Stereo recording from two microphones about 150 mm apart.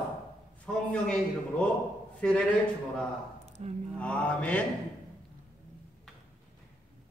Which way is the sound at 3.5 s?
45° right (ahead or behind).